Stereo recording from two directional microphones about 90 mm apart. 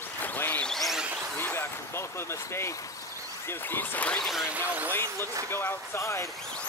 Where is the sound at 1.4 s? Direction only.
25° left (ahead or behind).